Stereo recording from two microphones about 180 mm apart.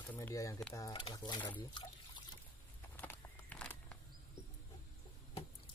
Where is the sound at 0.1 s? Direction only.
15° left (ahead or behind).